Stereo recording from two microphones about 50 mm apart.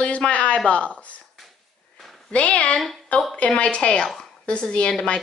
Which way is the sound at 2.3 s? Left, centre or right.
Left.